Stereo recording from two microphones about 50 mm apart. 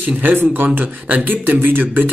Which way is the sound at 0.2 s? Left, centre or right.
Right.